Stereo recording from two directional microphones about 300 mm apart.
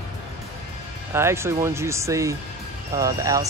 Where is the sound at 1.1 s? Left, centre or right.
Centre.